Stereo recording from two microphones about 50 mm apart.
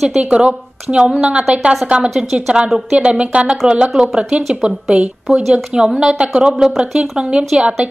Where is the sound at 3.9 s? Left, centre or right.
Centre.